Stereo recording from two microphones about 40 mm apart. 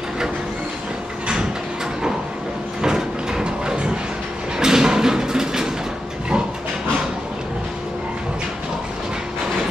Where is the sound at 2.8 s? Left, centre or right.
Centre.